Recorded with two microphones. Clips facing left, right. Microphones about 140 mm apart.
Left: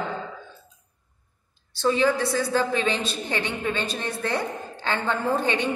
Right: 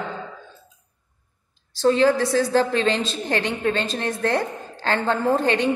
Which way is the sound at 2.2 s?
90° right.